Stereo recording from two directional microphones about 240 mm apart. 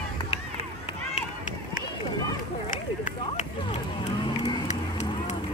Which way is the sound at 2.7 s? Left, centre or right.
Left.